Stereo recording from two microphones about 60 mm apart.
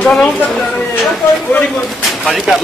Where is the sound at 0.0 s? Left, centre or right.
Centre.